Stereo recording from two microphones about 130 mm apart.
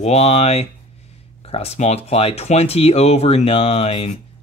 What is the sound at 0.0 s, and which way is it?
Speech, 55° left (ahead or behind).